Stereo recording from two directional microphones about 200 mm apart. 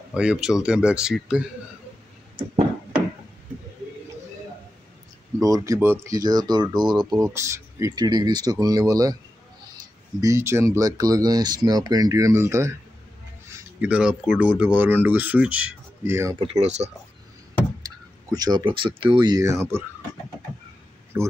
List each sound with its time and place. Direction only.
0.1 s speech: 5° right (ahead or behind)
5.4 s speech: 15° right (ahead or behind)
10.2 s speech: 15° right (ahead or behind)
13.7 s speech: 5° right (ahead or behind)
16.3 s speech: 30° right (ahead or behind)
17.8 s speech: 20° right (ahead or behind)
21.1 s speech: 10° right (ahead or behind)